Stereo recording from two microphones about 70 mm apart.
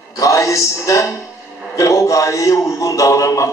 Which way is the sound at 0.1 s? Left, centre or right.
Left.